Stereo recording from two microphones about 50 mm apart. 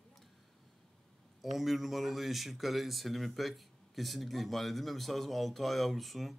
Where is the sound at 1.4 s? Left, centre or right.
Centre.